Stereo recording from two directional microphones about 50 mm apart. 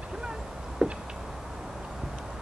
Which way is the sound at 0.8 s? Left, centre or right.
Centre.